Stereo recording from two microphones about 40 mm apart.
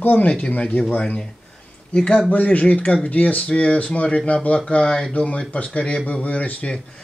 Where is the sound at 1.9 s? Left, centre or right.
Left.